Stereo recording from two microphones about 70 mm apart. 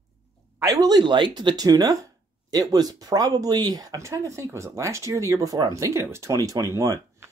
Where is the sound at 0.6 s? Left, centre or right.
Right.